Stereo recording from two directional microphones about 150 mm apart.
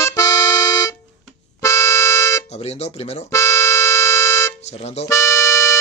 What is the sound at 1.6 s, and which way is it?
Music, 20° left (ahead or behind).